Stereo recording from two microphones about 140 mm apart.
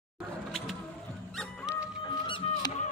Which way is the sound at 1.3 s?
5° right (ahead or behind).